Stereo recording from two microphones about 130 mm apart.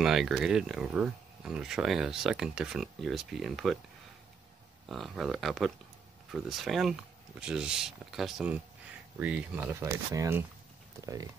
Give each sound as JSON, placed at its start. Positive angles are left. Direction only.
{"t": 0.0, "sound": "speech", "side_deg": -5}
{"t": 4.8, "sound": "speech", "side_deg": 0}